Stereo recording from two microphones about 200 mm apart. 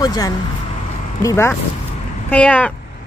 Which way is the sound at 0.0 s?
20° left (ahead or behind).